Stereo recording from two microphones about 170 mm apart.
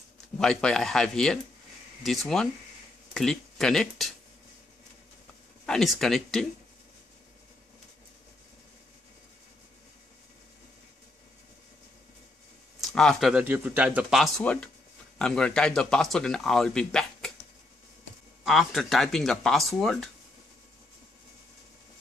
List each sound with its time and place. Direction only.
0.4 s speech: 5° left (ahead or behind)
5.7 s speech: centre (ahead or behind)
12.8 s speech: centre (ahead or behind)
18.4 s speech: centre (ahead or behind)